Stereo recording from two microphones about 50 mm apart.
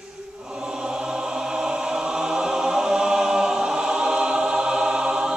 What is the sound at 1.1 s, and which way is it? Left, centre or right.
Music, centre.